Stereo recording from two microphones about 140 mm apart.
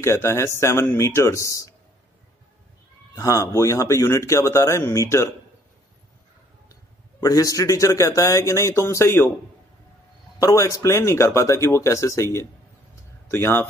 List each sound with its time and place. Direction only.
0.0 s speech: 20° left (ahead or behind)
3.2 s speech: 20° left (ahead or behind)
7.2 s speech: 25° left (ahead or behind)
10.4 s speech: 25° left (ahead or behind)